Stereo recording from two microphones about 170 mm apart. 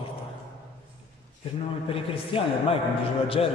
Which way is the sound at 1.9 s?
35° left (ahead or behind).